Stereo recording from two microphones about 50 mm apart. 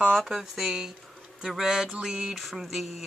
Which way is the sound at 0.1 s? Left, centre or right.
Centre.